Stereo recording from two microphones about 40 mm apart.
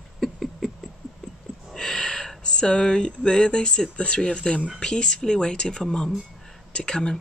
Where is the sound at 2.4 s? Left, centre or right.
Left.